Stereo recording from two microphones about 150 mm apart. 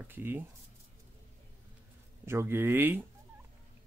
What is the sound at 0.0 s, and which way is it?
Speech, 15° right (ahead or behind).